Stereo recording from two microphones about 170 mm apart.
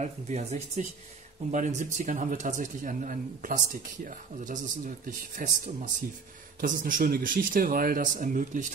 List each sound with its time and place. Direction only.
0.0 s a man's voice: 45° right (ahead or behind)